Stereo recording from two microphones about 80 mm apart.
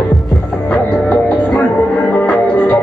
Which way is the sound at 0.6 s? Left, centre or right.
Centre.